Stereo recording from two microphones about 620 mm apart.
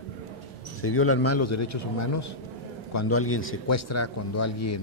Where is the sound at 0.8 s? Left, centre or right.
Left.